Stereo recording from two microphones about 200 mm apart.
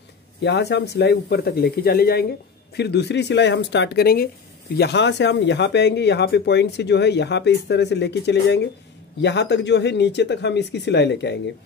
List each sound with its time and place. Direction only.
0.4 s a man's voice: 60° left (ahead or behind)